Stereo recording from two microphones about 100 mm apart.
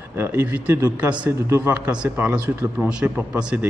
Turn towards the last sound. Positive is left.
turn(degrees=-15)  # may be behind; listen again after turning